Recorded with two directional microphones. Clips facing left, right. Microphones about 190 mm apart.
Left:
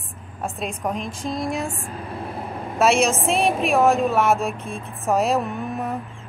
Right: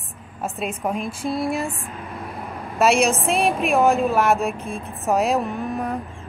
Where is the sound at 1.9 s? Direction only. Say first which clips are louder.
Left 2 dB; 30° left (ahead or behind).